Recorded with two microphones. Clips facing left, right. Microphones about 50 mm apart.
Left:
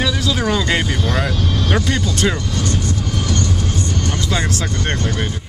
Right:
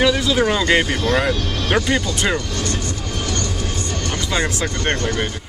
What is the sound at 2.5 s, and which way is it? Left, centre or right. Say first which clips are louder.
Music: left 3 dB; right.